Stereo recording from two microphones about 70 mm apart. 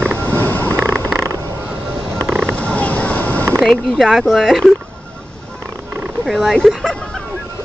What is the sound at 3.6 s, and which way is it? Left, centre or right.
Speech, centre.